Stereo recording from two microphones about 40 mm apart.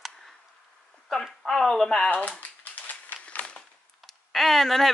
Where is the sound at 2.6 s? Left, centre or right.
Left.